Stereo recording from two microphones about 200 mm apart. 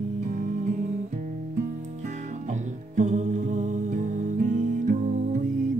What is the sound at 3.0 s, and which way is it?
Music, 40° right (ahead or behind).